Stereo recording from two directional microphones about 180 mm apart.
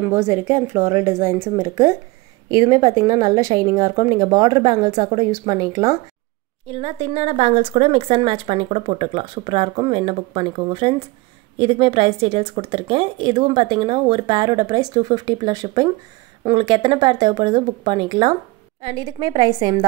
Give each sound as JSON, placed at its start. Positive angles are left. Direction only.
{"t": 0.1, "sound": "speech", "side_deg": -10}
{"t": 6.7, "sound": "speech", "side_deg": -35}